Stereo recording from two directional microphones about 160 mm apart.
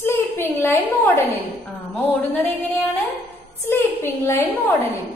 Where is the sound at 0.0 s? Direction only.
15° left (ahead or behind).